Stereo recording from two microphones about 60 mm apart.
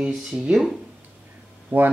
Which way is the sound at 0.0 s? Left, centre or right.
Centre.